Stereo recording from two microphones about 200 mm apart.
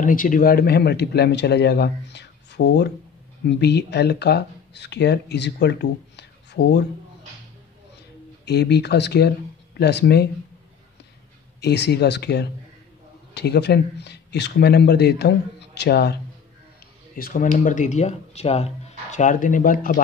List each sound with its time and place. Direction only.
0.0 s a man's voice: 40° left (ahead or behind)
8.5 s speech: 55° left (ahead or behind)
11.6 s speech: 55° left (ahead or behind)
17.2 s speech: 45° left (ahead or behind)